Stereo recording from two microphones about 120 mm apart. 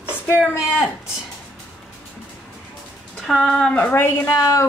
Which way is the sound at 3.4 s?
5° left (ahead or behind).